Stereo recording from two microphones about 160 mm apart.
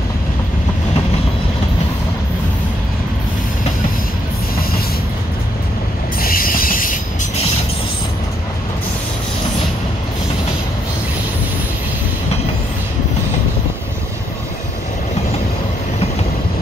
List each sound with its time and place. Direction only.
6.2 s railroad car: 65° left (ahead or behind)